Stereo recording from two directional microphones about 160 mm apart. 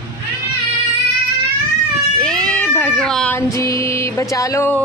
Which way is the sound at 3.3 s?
20° left (ahead or behind).